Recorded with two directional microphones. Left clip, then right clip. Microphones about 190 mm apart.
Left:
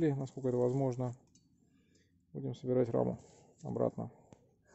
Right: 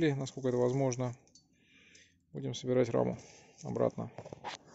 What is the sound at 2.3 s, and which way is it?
Speech, 10° left (ahead or behind).